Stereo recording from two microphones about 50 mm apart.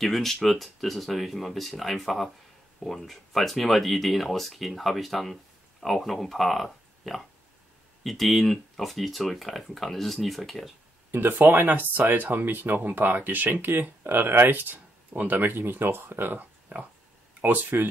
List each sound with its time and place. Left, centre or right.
0.0 s speech: centre
11.1 s speech: right